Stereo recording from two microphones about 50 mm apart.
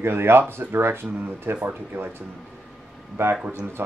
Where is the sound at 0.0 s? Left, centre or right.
Right.